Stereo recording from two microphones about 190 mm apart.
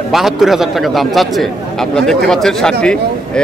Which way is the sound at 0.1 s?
Centre (ahead or behind).